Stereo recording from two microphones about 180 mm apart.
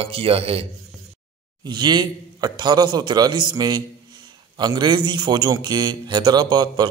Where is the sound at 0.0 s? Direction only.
30° right (ahead or behind).